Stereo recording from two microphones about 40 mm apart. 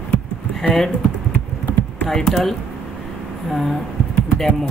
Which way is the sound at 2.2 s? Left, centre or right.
Centre.